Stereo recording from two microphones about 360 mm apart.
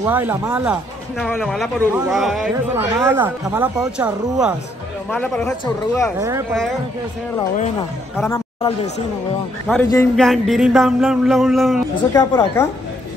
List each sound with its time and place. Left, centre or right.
0.0 s a man's voice: centre
6.1 s a man's voice: centre
8.2 s a man's voice: centre